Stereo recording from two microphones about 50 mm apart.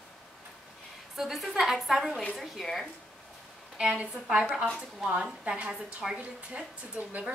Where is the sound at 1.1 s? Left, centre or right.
Centre.